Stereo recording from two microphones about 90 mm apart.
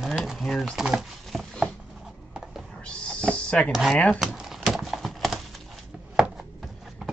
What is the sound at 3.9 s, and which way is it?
Speech, 15° left (ahead or behind).